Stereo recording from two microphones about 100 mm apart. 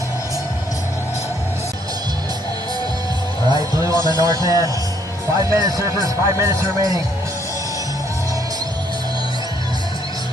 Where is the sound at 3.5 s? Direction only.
35° right (ahead or behind).